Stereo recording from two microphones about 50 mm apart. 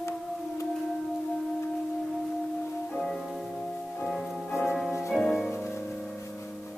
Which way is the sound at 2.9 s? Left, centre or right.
Centre.